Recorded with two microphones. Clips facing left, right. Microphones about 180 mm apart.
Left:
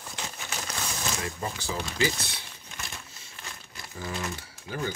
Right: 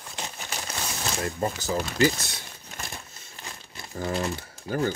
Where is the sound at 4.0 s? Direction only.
40° right (ahead or behind).